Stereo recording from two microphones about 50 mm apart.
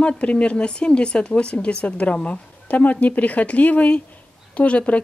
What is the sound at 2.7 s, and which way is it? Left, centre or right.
Speech, left.